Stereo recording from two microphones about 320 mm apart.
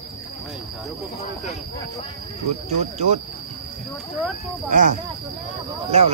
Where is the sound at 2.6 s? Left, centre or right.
Right.